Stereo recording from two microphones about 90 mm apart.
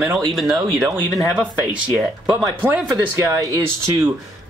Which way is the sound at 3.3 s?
35° right (ahead or behind).